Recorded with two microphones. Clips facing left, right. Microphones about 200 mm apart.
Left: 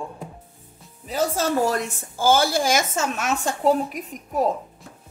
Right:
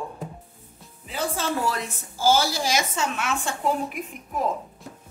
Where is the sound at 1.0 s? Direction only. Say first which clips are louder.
Left 5 dB; 40° left (ahead or behind).